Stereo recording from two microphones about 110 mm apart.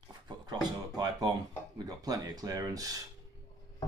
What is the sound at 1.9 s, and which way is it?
Speech, 35° right (ahead or behind).